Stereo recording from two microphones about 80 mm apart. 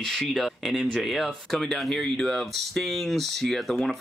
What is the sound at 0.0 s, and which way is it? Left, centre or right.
Speech, centre.